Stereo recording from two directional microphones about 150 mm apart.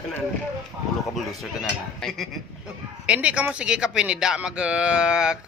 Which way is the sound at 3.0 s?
10° right (ahead or behind).